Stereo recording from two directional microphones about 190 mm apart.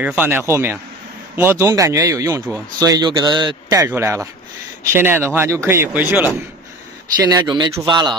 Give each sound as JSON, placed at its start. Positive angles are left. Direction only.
{"t": 0.0, "sound": "speech", "side_deg": -10}
{"t": 7.2, "sound": "speech", "side_deg": -20}